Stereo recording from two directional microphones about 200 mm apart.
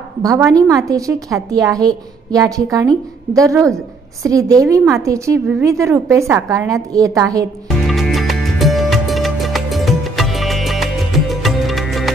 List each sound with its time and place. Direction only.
0.2 s a woman's voice: 15° right (ahead or behind)
7.8 s music: centre (ahead or behind)